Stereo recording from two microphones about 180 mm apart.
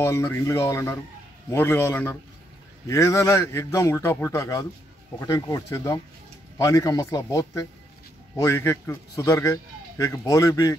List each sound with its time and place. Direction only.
0.0 s a man's voice: 15° left (ahead or behind)